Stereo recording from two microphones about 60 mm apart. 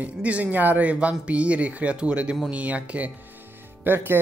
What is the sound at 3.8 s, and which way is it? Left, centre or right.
Speech, right.